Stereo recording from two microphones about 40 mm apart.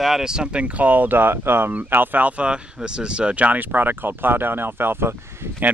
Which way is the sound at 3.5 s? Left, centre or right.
Right.